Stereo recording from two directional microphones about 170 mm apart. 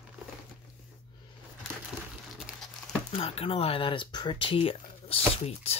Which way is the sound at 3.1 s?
35° left (ahead or behind).